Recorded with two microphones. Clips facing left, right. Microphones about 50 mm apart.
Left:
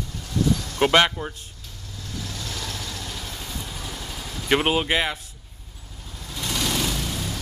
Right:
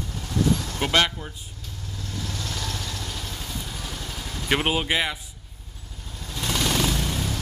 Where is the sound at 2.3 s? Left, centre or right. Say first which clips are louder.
Right 1 dB; centre.